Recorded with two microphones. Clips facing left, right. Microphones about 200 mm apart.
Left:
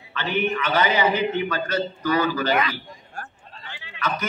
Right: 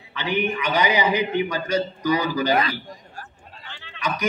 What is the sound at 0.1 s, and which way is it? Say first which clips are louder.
A man's voice: even; 15° right (ahead or behind).